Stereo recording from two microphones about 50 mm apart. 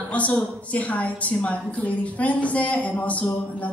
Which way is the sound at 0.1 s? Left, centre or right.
Left.